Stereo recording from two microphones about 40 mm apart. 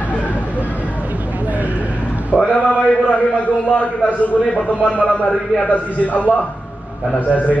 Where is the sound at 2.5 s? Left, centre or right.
Left.